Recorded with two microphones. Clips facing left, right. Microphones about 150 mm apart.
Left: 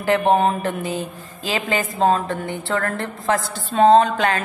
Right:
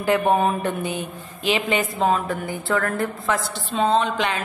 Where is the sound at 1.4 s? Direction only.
35° left (ahead or behind).